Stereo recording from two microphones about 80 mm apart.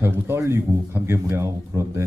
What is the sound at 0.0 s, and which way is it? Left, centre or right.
Speech, right.